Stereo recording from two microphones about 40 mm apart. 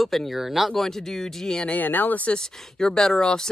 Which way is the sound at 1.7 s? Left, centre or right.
Left.